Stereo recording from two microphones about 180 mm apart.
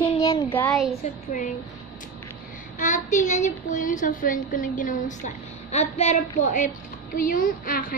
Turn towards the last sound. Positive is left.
turn(degrees=50)  # may be behind; listen again after turning